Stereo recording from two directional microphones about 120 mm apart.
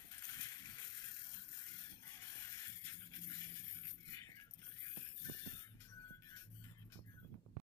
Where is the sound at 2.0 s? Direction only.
25° left (ahead or behind).